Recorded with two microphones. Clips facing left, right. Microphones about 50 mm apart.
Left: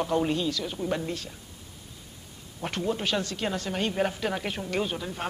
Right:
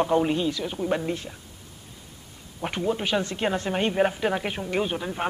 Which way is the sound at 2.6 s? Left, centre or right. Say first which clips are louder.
Right 3 dB; centre.